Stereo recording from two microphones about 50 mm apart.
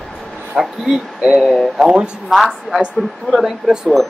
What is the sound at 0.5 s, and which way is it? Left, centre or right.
Speech, centre.